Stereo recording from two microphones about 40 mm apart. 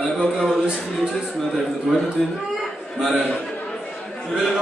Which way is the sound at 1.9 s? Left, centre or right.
Centre.